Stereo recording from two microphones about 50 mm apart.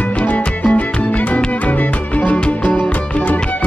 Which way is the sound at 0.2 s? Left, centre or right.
Left.